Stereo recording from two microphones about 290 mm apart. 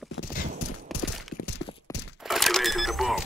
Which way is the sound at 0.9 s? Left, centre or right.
Left.